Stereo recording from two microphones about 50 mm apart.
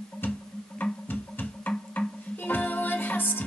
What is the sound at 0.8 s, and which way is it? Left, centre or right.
Music, left.